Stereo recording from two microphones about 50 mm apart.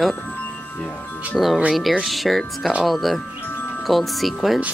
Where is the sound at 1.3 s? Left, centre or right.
Centre.